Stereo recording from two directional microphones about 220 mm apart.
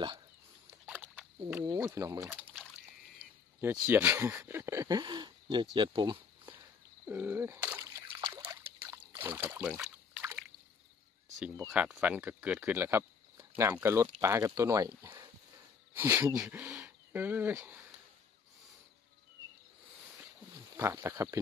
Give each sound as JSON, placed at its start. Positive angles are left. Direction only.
{"t": 0.7, "sound": "a sound", "side_deg": -10}
{"t": 1.5, "sound": "speech", "side_deg": -15}
{"t": 3.8, "sound": "speech", "side_deg": -10}
{"t": 7.1, "sound": "splash", "side_deg": -10}
{"t": 11.6, "sound": "speech", "side_deg": -5}
{"t": 20.3, "sound": "a sound", "side_deg": -10}